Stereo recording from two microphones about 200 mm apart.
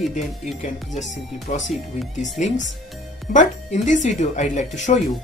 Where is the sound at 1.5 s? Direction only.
40° left (ahead or behind).